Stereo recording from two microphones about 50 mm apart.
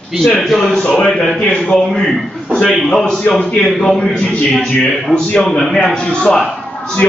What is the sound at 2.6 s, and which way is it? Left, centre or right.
Speech, centre.